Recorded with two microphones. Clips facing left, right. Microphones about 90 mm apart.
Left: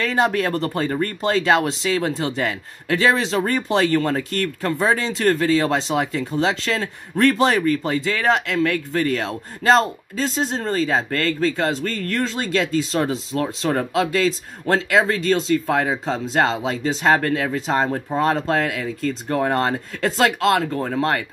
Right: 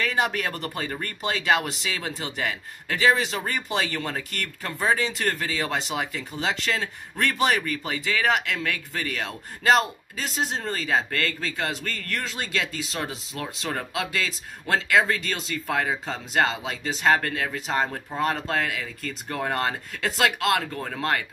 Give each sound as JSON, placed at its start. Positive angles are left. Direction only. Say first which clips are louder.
{"t": 0.0, "sound": "a man's voice", "louder": "left 6 dB", "side_deg": 40}
{"t": 19.0, "sound": "a man's voice", "louder": "left 8 dB", "side_deg": 35}